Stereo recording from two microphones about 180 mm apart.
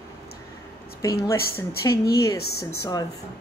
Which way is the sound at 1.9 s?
60° left (ahead or behind).